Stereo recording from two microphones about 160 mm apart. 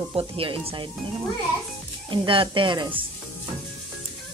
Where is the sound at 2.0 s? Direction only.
30° right (ahead or behind).